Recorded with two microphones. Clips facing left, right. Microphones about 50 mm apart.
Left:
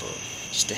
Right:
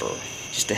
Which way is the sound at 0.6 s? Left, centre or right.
Centre.